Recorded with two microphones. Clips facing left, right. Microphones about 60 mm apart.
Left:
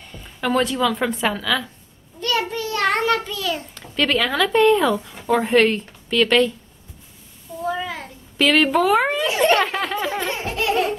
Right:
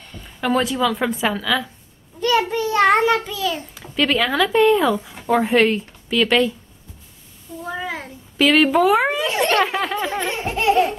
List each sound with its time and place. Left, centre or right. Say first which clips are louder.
0.1 s speech: right 1 dB; centre
2.1 s a child's voice: right 4 dB; centre
7.7 s a sound: even; centre
8.4 s speech: right 2 dB; centre
10.4 s baby laughter: right 2 dB; centre